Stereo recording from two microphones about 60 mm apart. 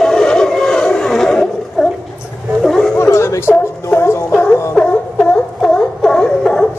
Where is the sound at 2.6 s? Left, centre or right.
Centre.